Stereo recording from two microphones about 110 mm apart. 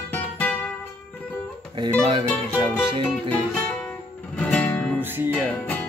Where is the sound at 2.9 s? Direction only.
50° right (ahead or behind).